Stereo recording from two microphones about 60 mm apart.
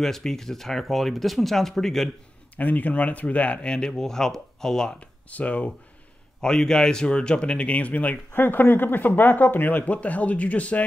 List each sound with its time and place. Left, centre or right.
0.0 s speech: centre
2.5 s speech: left; by 5.1 s centre
5.3 s speech: left
6.4 s speech: centre